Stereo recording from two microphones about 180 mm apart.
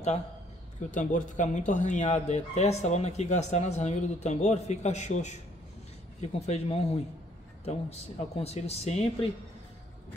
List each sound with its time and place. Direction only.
0.9 s speech: 45° left (ahead or behind)
6.4 s speech: 35° left (ahead or behind)